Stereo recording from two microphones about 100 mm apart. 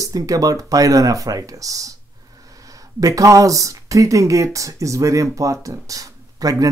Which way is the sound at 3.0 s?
35° right (ahead or behind).